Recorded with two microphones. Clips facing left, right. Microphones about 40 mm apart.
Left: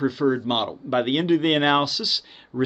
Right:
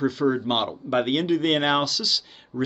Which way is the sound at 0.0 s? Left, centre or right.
Centre.